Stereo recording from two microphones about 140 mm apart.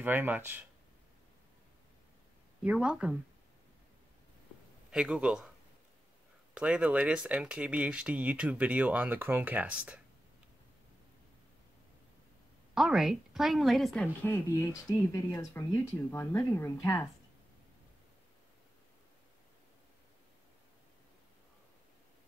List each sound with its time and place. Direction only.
0.0 s speech: 15° right (ahead or behind)
2.6 s speech: 10° right (ahead or behind)
4.9 s a woman's voice: 5° right (ahead or behind)
6.5 s speech: 5° right (ahead or behind)
12.7 s a woman's voice: 5° right (ahead or behind)
14.0 s speech: 15° left (ahead or behind)